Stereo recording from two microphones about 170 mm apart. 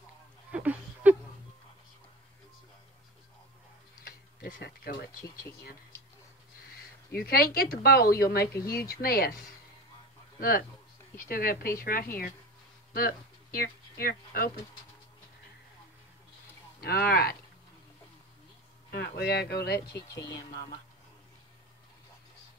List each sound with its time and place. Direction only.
0.5 s a sound: 10° right (ahead or behind)
4.4 s speech: 65° left (ahead or behind)
7.1 s speech: 60° left (ahead or behind)
11.2 s speech: 60° left (ahead or behind)
16.8 s speech: 60° left (ahead or behind)
18.9 s speech: 65° left (ahead or behind)
20.0 s speech: 20° left (ahead or behind)